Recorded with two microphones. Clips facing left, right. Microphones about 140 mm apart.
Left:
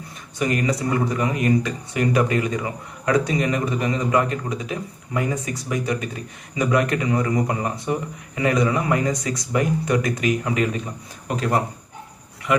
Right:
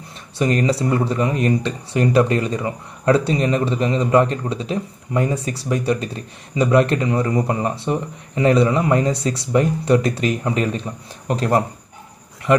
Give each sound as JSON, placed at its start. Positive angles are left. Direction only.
{"t": 0.4, "sound": "speech", "side_deg": -30}
{"t": 6.6, "sound": "speech", "side_deg": -30}